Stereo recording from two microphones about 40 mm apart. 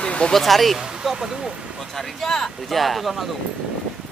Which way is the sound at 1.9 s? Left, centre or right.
Centre.